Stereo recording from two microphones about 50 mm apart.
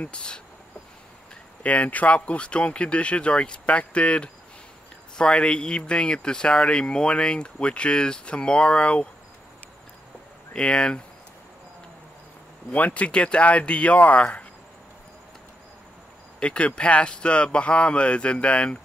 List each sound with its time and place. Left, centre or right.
0.0 s speech: centre
1.6 s speech: left
10.5 s speech: centre
12.7 s speech: left
16.3 s speech: left